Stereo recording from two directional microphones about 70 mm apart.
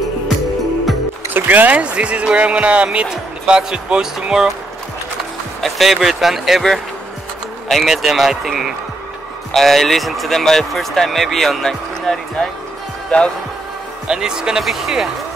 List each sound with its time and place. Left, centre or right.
1.3 s speech: right; by 4.6 s centre
5.6 s speech: centre
14.0 s speech: centre